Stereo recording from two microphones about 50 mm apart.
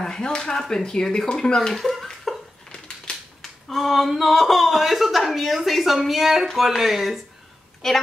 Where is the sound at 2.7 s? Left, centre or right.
Centre.